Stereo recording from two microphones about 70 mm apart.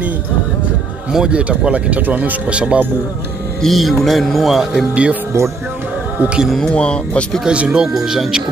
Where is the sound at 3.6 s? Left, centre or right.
Centre.